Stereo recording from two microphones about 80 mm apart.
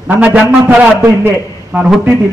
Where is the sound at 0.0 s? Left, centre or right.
Right.